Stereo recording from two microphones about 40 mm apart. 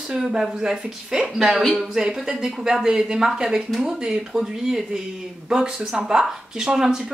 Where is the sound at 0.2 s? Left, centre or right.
Centre.